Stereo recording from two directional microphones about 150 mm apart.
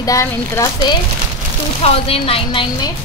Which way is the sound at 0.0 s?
20° left (ahead or behind).